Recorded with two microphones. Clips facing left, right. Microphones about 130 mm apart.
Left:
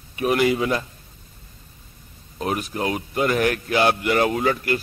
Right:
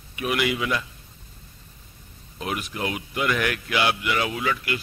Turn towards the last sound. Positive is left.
turn(degrees=40)  # may be behind; listen again after turning